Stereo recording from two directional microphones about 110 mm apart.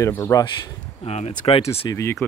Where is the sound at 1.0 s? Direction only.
75° left (ahead or behind).